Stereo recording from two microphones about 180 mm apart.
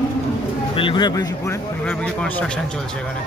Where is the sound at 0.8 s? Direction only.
25° left (ahead or behind); by 2.8 s 5° left (ahead or behind).